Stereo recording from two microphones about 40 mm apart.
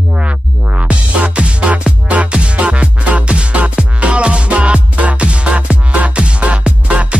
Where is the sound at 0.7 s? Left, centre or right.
Right.